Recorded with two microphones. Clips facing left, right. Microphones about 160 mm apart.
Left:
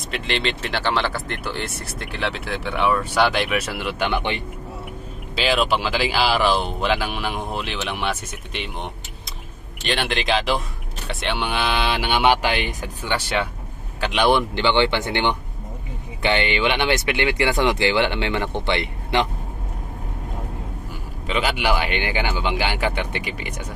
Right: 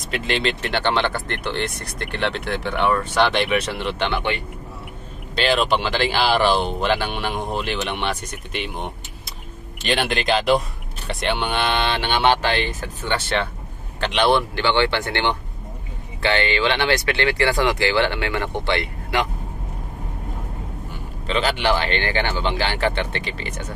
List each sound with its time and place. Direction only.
0.1 s speech: centre (ahead or behind)
5.3 s speech: 5° left (ahead or behind); by 19.2 s 20° left (ahead or behind)
21.3 s speech: 10° left (ahead or behind)